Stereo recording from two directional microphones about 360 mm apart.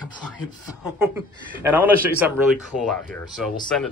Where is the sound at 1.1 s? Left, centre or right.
Centre.